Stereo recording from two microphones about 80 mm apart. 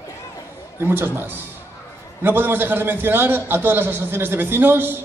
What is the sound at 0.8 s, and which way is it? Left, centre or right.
A man's voice, right.